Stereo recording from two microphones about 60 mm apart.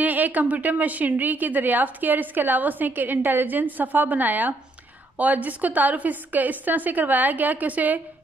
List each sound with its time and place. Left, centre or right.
0.0 s a woman's voice: right